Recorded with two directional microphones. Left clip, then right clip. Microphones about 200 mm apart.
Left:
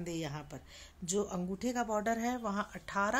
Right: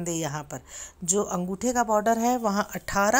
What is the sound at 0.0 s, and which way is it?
Speech, 20° right (ahead or behind).